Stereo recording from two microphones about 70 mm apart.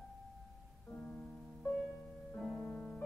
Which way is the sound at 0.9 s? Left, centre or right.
Centre.